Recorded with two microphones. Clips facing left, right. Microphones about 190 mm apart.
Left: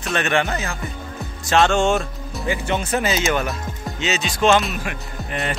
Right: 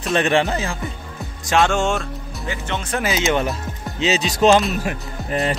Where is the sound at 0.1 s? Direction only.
30° right (ahead or behind).